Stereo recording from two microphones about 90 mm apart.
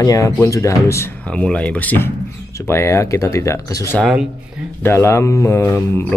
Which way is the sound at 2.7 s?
30° left (ahead or behind).